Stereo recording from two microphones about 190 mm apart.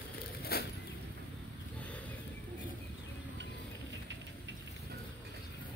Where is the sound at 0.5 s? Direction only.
55° left (ahead or behind).